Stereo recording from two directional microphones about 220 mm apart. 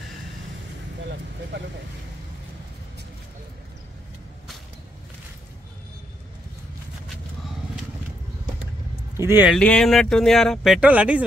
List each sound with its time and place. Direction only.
1.5 s vehicle: 50° right (ahead or behind)
9.1 s speech: 10° right (ahead or behind)
9.6 s speech: 5° left (ahead or behind)